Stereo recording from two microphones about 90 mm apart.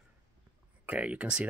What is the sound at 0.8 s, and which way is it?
Speech, 15° right (ahead or behind).